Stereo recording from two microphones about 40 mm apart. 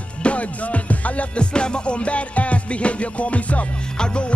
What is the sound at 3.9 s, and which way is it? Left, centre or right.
Music, left.